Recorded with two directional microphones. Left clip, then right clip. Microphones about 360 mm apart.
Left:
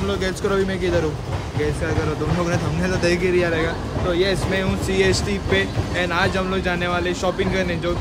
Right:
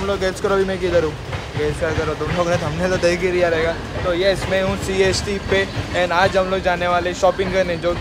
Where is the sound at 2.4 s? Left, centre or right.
Centre.